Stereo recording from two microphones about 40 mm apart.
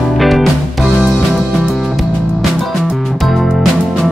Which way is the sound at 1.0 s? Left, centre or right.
Centre.